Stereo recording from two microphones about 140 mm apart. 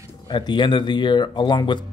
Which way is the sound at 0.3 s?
30° left (ahead or behind).